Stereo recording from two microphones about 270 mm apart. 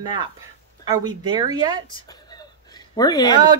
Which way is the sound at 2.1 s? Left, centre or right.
Centre.